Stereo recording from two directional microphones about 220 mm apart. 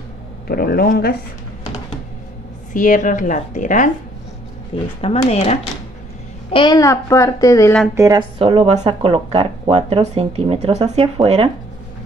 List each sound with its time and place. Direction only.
0.5 s speech: 45° left (ahead or behind)
2.7 s a woman's voice: 35° left (ahead or behind)
5.0 s a child's voice: 25° left (ahead or behind)
7.8 s a woman's voice: 10° right (ahead or behind)
8.4 s speech: 25° right (ahead or behind)